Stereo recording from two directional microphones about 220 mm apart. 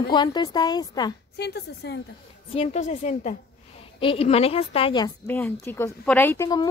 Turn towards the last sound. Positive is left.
turn(degrees=15)  # may be behind; listen again after turning